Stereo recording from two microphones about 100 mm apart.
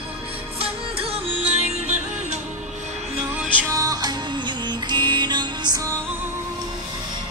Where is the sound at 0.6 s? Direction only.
80° right.